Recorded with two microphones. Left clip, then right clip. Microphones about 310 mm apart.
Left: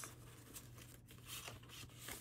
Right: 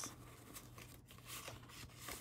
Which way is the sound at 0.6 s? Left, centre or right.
Centre.